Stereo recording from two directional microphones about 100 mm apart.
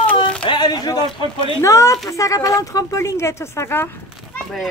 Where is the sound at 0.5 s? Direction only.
45° left (ahead or behind).